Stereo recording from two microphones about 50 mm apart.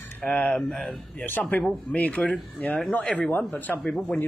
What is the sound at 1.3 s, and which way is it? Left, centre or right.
Speech, left.